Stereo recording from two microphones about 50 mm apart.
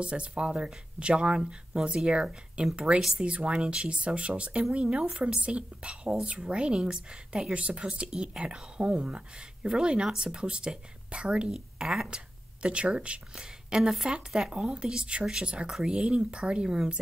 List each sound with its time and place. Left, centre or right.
0.0 s speech: right
3.3 s speech: right
12.6 s speech: right